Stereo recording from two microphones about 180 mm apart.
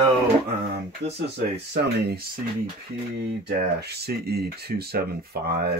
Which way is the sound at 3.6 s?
65° right (ahead or behind).